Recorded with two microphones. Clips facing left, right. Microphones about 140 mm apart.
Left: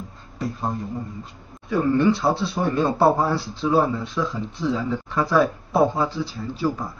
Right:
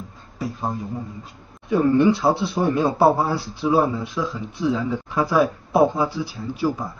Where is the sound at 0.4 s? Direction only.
Centre (ahead or behind).